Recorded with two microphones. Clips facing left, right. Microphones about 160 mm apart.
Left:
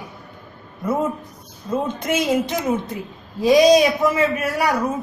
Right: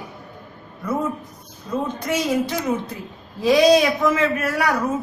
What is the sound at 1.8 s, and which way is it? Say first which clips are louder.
A man's voice: left 1 dB; 20° left (ahead or behind).